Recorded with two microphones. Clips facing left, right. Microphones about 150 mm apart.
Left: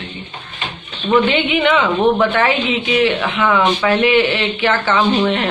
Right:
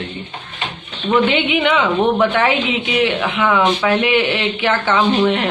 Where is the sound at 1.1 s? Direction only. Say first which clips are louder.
Left 1 dB; 15° right (ahead or behind).